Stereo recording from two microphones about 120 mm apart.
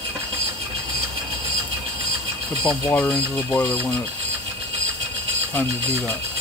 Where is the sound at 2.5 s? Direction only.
15° left (ahead or behind).